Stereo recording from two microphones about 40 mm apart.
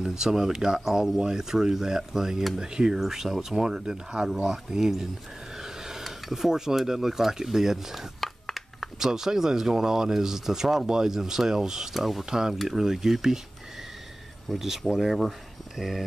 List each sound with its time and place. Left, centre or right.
0.0 s speech: centre
5.6 s a sound: centre
6.0 s speech: centre
8.2 s a sound: centre
9.0 s speech: centre
12.3 s speech: centre
14.5 s speech: centre